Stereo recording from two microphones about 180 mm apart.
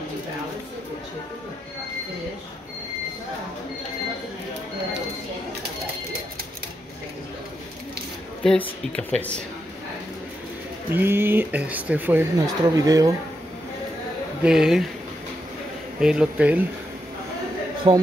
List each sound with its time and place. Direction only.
8.5 s speech: 5° left (ahead or behind)
10.9 s speech: 10° right (ahead or behind)
14.4 s speech: 5° right (ahead or behind)
16.0 s speech: 5° right (ahead or behind)
17.9 s a man's voice: 25° right (ahead or behind)